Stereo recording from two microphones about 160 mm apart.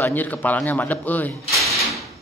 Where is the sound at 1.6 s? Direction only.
Centre (ahead or behind).